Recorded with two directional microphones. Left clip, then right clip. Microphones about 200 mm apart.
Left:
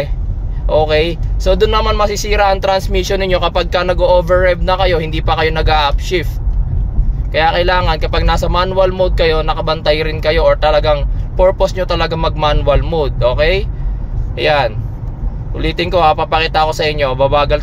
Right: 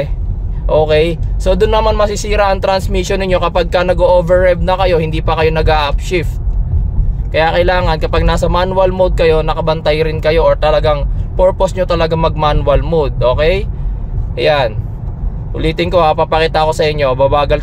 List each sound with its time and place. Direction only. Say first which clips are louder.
0.7 s speech: right 2 dB; 25° right (ahead or behind)
7.3 s speech: right 1 dB; 30° right (ahead or behind)